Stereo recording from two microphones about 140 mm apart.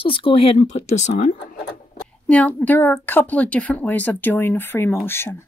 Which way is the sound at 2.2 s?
10° left (ahead or behind).